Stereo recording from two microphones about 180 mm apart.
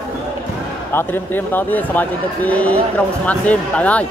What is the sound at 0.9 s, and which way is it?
A man's voice, 10° left (ahead or behind).